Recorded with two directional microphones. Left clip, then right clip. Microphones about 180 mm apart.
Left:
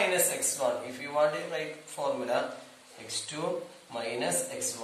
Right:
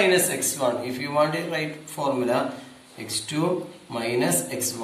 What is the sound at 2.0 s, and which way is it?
Speech, 20° right (ahead or behind).